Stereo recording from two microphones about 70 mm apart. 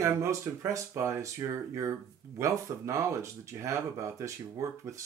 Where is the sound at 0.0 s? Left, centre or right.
Right.